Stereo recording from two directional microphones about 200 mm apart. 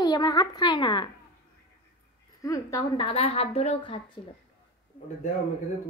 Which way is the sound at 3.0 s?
30° left (ahead or behind).